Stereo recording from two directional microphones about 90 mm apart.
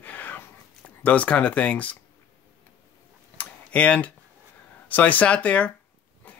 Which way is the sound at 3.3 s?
15° left (ahead or behind).